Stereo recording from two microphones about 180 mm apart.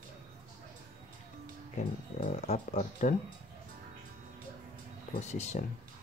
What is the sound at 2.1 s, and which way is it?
Speech, 35° left (ahead or behind).